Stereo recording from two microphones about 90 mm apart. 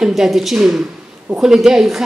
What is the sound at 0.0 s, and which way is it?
A woman's voice, 5° right (ahead or behind).